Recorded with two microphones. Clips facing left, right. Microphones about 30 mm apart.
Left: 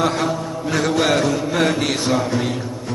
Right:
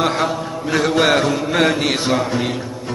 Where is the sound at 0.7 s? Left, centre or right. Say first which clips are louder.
Right 3 dB; centre.